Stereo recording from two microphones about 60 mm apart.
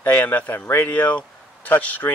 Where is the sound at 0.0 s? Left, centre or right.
Left.